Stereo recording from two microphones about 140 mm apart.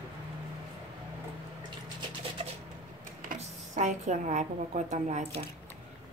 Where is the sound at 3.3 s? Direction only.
60° right (ahead or behind).